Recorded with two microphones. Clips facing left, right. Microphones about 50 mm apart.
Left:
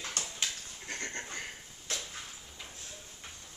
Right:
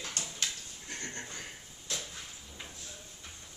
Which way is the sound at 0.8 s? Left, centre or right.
Left.